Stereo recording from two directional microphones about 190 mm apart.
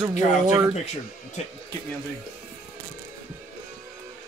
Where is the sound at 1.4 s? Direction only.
40° left (ahead or behind).